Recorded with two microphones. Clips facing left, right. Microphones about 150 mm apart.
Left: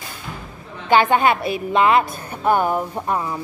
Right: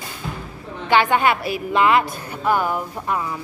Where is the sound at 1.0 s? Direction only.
25° left (ahead or behind).